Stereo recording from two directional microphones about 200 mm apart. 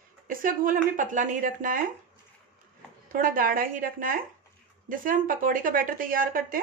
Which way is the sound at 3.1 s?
45° right (ahead or behind).